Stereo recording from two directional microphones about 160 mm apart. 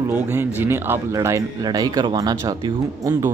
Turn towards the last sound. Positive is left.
turn(degrees=-20)  # may be behind; listen again after turning